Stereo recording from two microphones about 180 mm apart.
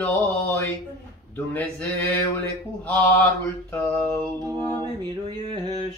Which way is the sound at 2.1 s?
10° left (ahead or behind).